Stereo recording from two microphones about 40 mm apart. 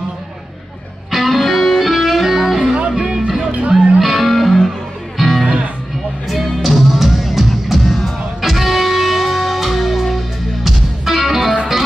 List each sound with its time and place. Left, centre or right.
1.1 s music: centre
4.0 s music: centre